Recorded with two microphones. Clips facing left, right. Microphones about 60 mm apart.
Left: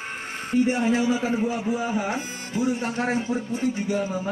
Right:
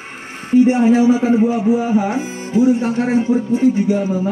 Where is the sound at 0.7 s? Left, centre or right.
Right.